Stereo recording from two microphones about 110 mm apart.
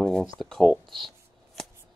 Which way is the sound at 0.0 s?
5° left (ahead or behind).